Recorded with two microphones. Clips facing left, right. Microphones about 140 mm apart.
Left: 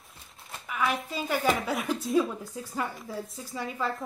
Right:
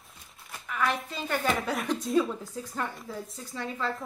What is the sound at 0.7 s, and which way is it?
A woman's voice, 5° left (ahead or behind).